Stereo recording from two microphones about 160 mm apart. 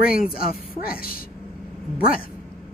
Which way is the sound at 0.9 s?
65° left (ahead or behind).